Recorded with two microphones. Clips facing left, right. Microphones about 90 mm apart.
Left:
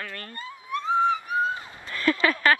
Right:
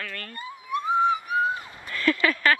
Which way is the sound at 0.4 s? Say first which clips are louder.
Right 2 dB; 15° right (ahead or behind).